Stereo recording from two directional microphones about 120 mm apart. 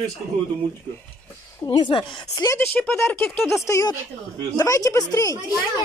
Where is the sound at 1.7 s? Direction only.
40° left (ahead or behind).